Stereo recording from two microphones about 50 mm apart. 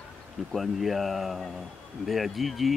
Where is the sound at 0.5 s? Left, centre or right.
Centre.